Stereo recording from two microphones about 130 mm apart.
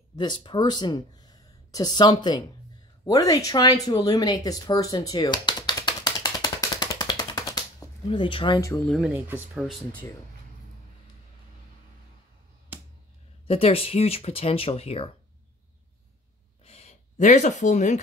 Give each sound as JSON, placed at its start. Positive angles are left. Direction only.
{"t": 0.2, "sound": "speech", "side_deg": 35}
{"t": 3.1, "sound": "a sound", "side_deg": 25}
{"t": 8.1, "sound": "speech", "side_deg": 40}
{"t": 8.8, "sound": "speech", "side_deg": 0}
{"t": 9.1, "sound": "speech", "side_deg": -10}
{"t": 13.5, "sound": "speech", "side_deg": 50}
{"t": 16.6, "sound": "a sound", "side_deg": 50}